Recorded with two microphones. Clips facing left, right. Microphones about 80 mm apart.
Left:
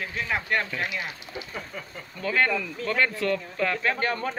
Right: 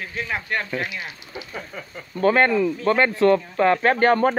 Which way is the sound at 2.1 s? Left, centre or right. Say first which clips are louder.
Right 8 dB; right.